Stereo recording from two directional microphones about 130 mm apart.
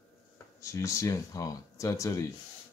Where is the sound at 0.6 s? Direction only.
25° left (ahead or behind).